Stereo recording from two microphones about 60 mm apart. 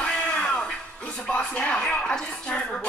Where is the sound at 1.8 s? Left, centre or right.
Centre.